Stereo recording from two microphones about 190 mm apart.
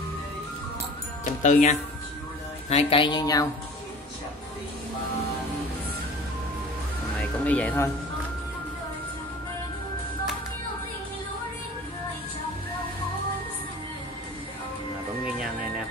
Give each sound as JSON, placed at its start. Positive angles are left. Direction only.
{"t": 1.2, "sound": "speech", "side_deg": 40}
{"t": 7.2, "sound": "speech", "side_deg": 5}